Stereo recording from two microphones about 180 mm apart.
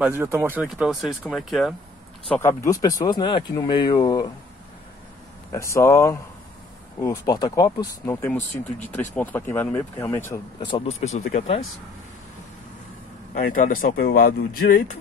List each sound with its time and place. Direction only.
0.0 s speech: 10° right (ahead or behind)
0.7 s speech: centre (ahead or behind)
2.2 s speech: 10° left (ahead or behind)
5.5 s speech: 15° left (ahead or behind)
10.6 s speech: 30° left (ahead or behind)
13.3 s speech: 50° left (ahead or behind)